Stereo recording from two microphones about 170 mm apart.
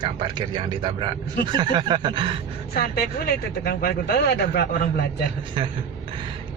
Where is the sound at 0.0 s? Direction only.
25° right (ahead or behind).